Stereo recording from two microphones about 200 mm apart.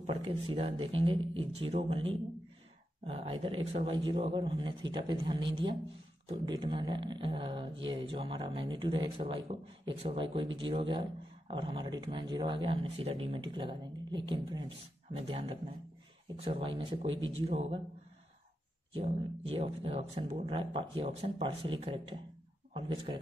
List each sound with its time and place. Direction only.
0.0 s speech: 30° right (ahead or behind)
19.5 s speech: 30° right (ahead or behind)